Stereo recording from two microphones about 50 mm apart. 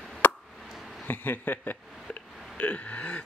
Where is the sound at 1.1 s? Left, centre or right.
Left.